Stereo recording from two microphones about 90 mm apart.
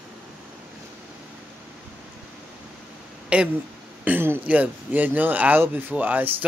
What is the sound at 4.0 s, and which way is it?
Speech, 20° right (ahead or behind).